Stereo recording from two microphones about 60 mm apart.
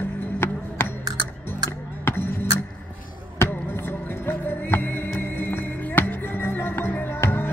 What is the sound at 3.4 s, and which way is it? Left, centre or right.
Basketball bounce, left.